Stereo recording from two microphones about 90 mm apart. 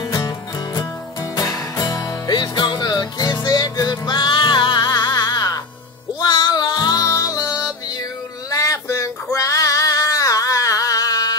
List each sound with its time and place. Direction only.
1.4 s music: 40° left (ahead or behind)
6.2 s music: 60° left (ahead or behind); by 7.5 s 40° left (ahead or behind)
8.5 s female singing: 40° left (ahead or behind)